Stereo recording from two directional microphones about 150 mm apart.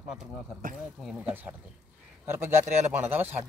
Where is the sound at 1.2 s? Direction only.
15° right (ahead or behind).